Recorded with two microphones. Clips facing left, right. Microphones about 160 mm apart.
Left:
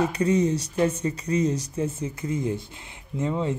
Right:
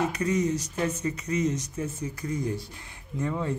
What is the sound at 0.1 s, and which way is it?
Speech, 30° left (ahead or behind).